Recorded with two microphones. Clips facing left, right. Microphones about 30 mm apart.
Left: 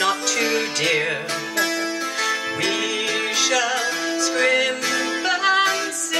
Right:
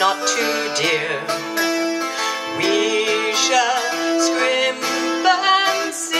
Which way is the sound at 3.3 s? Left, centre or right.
Right.